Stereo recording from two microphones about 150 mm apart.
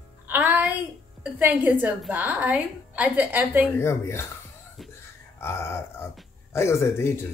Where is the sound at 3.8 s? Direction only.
15° left (ahead or behind).